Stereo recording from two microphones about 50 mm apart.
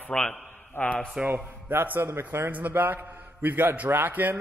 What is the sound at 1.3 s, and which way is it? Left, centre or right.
Speech, right.